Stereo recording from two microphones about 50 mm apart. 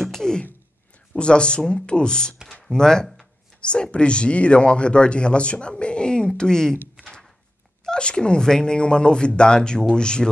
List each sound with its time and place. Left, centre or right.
0.0 s a sound: centre
1.1 s speech: centre
7.8 s speech: centre